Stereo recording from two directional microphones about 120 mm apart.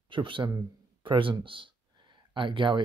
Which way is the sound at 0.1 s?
45° right (ahead or behind).